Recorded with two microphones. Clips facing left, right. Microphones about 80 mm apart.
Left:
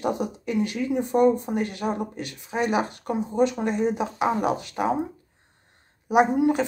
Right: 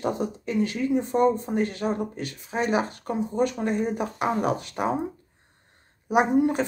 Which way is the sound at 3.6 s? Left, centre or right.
Centre.